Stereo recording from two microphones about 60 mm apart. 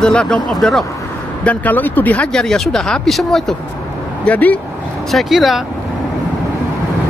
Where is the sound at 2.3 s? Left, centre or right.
Centre.